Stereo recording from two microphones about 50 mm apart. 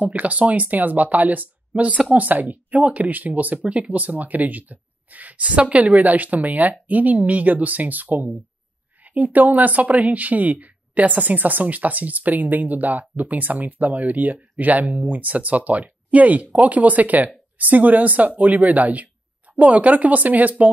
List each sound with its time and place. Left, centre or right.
0.0 s speech: right